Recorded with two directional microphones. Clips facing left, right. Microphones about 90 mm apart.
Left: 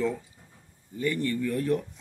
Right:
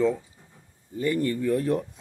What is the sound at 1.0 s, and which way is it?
Speech, 30° right (ahead or behind).